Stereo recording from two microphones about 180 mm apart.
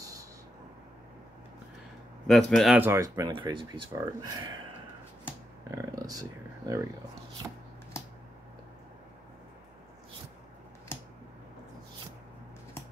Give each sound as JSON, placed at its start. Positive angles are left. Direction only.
{"t": 0.0, "sound": "a sound", "side_deg": -20}
{"t": 2.2, "sound": "speech", "side_deg": 0}
{"t": 2.8, "sound": "speech", "side_deg": -15}
{"t": 5.7, "sound": "speech", "side_deg": -20}
{"t": 7.4, "sound": "shuffling cards", "side_deg": -10}
{"t": 10.9, "sound": "a sound", "side_deg": 15}